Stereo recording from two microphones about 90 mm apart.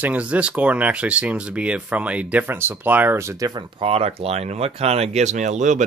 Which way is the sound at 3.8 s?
90° right.